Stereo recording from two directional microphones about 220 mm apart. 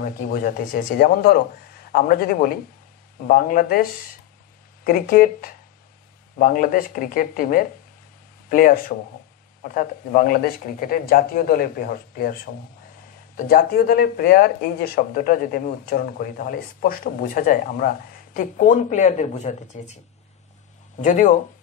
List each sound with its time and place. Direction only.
0.0 s speech: 40° left (ahead or behind)
4.8 s speech: 40° left (ahead or behind)
13.4 s speech: 40° left (ahead or behind)
21.0 s speech: 35° left (ahead or behind)